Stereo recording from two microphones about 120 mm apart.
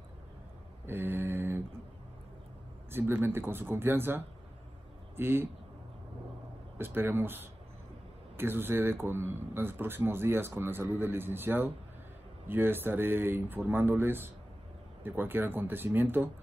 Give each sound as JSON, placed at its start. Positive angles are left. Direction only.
{"t": 0.8, "sound": "a sound", "side_deg": -15}
{"t": 2.9, "sound": "a man's voice", "side_deg": -20}
{"t": 6.8, "sound": "a man's voice", "side_deg": -20}